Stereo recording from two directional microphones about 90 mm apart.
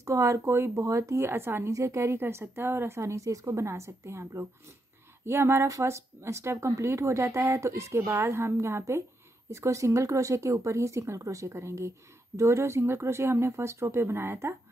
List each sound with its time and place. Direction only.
0.0 s a woman's voice: 35° right (ahead or behind)